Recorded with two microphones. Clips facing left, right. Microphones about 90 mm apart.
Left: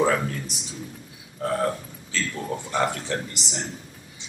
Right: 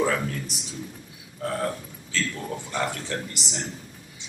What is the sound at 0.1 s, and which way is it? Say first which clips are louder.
Speech: left 2 dB; 5° left (ahead or behind).